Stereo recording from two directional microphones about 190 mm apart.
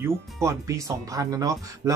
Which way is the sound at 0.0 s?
15° right (ahead or behind).